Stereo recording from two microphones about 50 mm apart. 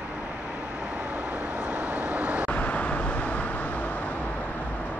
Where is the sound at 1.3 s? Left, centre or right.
Right.